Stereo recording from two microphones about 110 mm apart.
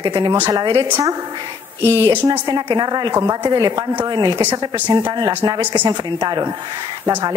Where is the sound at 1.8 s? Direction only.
25° right (ahead or behind).